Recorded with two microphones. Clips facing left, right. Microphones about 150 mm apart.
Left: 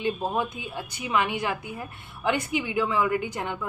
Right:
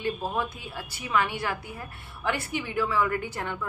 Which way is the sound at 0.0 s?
20° left (ahead or behind).